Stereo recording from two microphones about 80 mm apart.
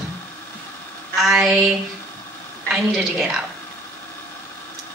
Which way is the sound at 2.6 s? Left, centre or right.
Centre.